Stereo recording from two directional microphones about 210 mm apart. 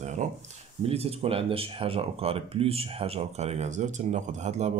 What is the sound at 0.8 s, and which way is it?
Speech, 30° right (ahead or behind).